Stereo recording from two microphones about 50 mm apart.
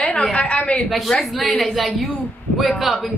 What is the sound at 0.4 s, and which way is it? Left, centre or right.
Speech, left.